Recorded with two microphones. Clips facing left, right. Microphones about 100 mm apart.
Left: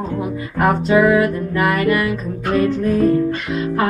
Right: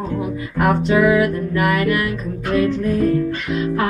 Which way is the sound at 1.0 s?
35° left (ahead or behind).